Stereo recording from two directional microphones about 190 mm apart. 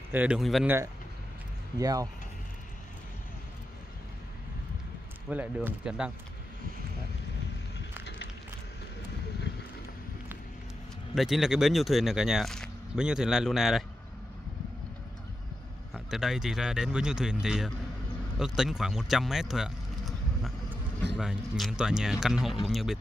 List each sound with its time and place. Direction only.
0.1 s speech: 5° right (ahead or behind)
1.8 s speech: 20° right (ahead or behind)
5.3 s speech: 10° right (ahead or behind)
11.1 s speech: centre (ahead or behind)
15.9 s speech: centre (ahead or behind)